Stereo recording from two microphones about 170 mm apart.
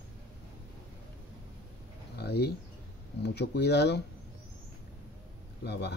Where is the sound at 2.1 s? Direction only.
75° left (ahead or behind).